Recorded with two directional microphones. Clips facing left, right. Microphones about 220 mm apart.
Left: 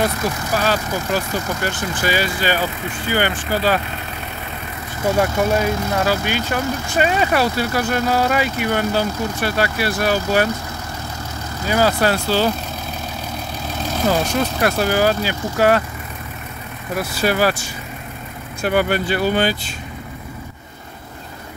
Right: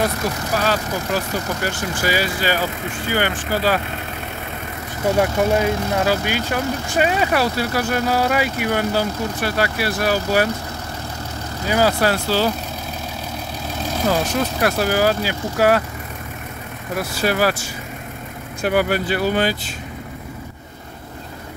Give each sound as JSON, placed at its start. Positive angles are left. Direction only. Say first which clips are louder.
{"t": 0.7, "sound": "speech", "louder": "left 2 dB", "side_deg": -5}
{"t": 5.2, "sound": "speech", "louder": "right 1 dB", "side_deg": -15}
{"t": 11.6, "sound": "speech", "louder": "even", "side_deg": -10}
{"t": 14.0, "sound": "speech", "louder": "left 1 dB", "side_deg": 0}
{"t": 17.2, "sound": "speech", "louder": "left 1 dB", "side_deg": 0}